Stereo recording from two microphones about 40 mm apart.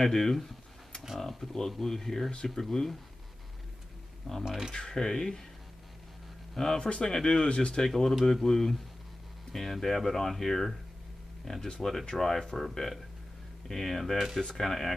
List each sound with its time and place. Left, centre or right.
0.0 s speech: centre
4.5 s speech: centre
4.7 s speech: centre
6.5 s speech: centre
7.4 s speech: left
7.8 s speech: centre
14.1 s speech: centre
14.4 s speech: centre